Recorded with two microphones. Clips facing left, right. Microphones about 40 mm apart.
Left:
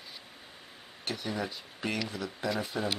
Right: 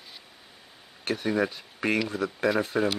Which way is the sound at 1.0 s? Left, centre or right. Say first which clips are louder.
Right 8 dB; right.